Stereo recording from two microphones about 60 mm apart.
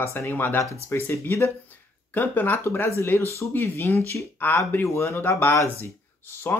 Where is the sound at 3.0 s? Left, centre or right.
Left.